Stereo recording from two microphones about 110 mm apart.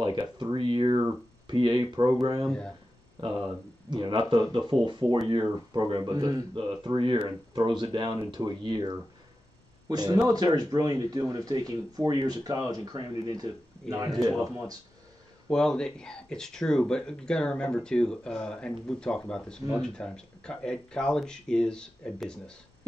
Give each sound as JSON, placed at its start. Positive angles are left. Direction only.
{"t": 0.0, "sound": "speech", "side_deg": -40}
{"t": 2.4, "sound": "speech", "side_deg": 10}
{"t": 3.2, "sound": "speech", "side_deg": -40}
{"t": 15.4, "sound": "speech", "side_deg": 5}